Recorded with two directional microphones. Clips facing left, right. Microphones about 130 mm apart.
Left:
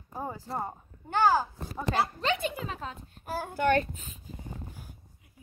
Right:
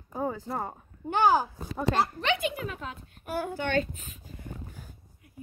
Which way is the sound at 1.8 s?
5° right (ahead or behind).